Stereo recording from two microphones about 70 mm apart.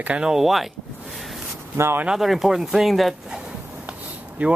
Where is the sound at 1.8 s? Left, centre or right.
Right.